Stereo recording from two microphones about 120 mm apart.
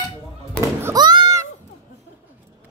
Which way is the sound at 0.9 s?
35° right (ahead or behind).